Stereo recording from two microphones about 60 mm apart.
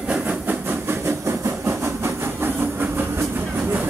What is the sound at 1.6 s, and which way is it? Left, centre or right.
Train, right.